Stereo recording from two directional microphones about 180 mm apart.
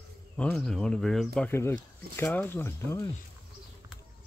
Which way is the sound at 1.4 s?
15° left (ahead or behind).